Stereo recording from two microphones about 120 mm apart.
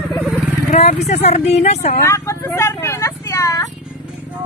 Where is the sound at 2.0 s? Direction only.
25° left (ahead or behind).